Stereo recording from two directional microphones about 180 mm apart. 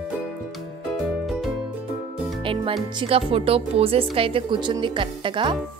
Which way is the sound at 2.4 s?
30° right (ahead or behind).